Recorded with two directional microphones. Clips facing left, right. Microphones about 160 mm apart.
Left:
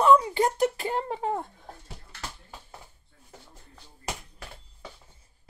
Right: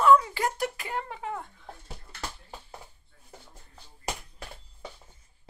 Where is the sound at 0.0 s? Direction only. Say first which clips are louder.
Left 1 dB; 25° left (ahead or behind).